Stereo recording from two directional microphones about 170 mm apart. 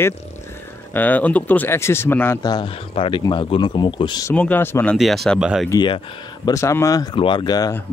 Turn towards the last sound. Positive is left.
turn(degrees=25)  # may be behind; listen again after turning